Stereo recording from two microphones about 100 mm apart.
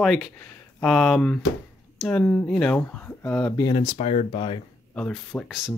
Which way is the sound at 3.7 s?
75° left (ahead or behind).